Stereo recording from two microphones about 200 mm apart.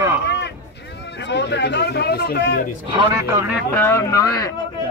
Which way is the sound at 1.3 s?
60° left (ahead or behind).